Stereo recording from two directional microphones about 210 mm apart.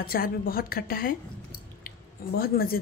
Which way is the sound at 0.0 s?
45° left (ahead or behind).